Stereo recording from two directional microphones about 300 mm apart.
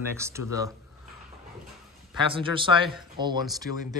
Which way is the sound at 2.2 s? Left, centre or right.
Centre.